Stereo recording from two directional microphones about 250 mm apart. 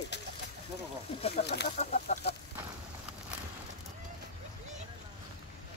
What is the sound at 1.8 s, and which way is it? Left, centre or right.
Speech, left.